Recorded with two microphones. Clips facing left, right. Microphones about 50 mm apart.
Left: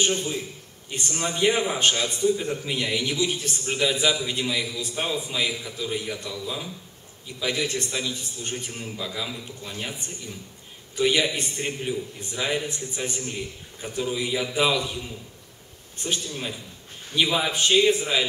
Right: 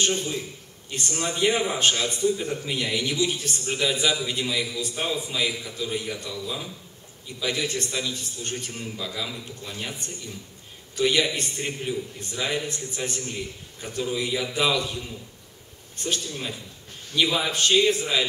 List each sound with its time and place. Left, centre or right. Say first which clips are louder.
0.0 s a man's voice: left 1 dB; centre